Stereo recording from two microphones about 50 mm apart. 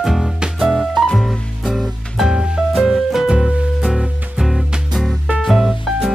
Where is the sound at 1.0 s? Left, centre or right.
Centre.